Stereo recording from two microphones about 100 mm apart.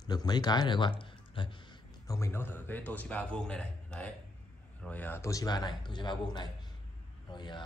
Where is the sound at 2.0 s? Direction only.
30° left (ahead or behind).